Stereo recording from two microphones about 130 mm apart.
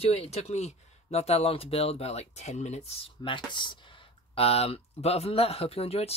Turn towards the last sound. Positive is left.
turn(degrees=50)  # may be behind; listen again after turning